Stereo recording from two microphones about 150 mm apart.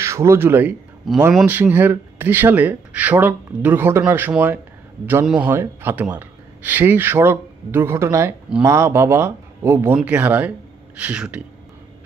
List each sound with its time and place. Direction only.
0.0 s speech: 20° right (ahead or behind)
1.1 s a man's voice: centre (ahead or behind)
1.4 s a man's voice: 10° right (ahead or behind)
5.5 s speech: 15° right (ahead or behind)